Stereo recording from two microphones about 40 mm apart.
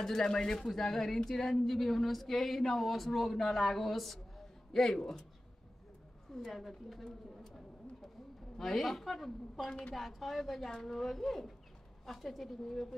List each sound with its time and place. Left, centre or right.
0.0 s speech: centre
6.3 s speech: centre
8.5 s speech: centre
9.6 s a woman's voice: left
9.9 s speech: centre